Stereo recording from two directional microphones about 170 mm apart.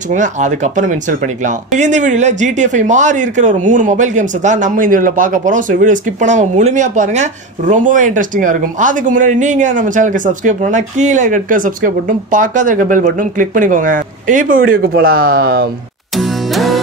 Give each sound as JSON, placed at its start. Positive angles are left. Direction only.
{"t": 0.1, "sound": "speech", "side_deg": -45}
{"t": 16.2, "sound": "music", "side_deg": 0}